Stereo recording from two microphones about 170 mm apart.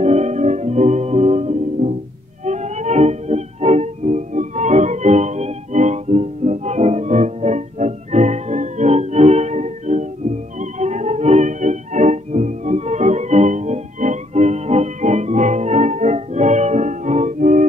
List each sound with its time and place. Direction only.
0.0 s music: 40° right (ahead or behind)